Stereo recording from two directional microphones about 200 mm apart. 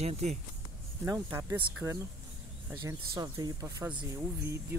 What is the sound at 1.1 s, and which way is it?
Speech, 15° right (ahead or behind).